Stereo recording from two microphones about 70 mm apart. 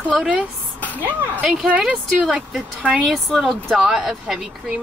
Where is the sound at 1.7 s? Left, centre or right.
Centre.